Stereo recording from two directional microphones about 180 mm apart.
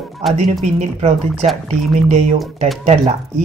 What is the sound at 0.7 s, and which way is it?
Speech, 35° right (ahead or behind).